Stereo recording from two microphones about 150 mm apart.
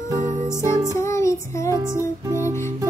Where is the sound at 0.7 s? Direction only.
25° right (ahead or behind).